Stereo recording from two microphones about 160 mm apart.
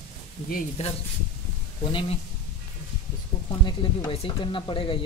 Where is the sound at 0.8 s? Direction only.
45° left (ahead or behind).